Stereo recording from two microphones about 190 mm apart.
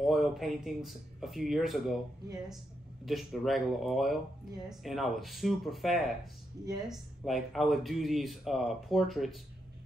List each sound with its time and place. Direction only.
0.0 s speech: centre (ahead or behind)
3.1 s speech: centre (ahead or behind)
6.6 s speech: 20° right (ahead or behind)
6.9 s speech: centre (ahead or behind)